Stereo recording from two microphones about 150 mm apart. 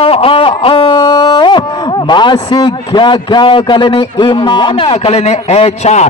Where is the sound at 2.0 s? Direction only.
30° left (ahead or behind).